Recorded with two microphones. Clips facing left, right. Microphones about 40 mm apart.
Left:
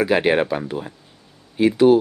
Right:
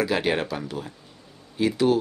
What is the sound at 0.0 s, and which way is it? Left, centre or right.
Speech, left.